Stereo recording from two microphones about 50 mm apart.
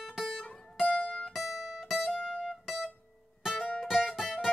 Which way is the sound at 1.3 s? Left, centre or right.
Centre.